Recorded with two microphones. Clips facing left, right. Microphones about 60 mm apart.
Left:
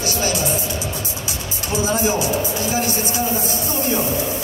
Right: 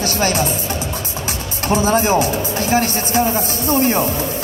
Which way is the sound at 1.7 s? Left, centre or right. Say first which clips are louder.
Right 5 dB; right.